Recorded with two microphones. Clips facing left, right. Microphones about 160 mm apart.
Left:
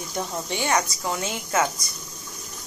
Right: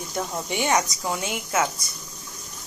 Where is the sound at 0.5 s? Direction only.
15° right (ahead or behind).